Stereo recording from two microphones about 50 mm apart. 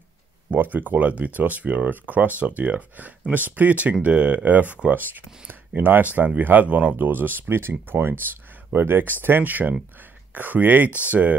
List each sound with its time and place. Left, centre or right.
0.5 s speech: right
7.0 s speech: right